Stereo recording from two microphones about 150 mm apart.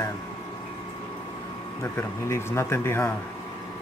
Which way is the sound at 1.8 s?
20° left (ahead or behind).